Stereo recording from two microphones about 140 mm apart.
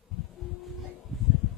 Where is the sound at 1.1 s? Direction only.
Centre (ahead or behind).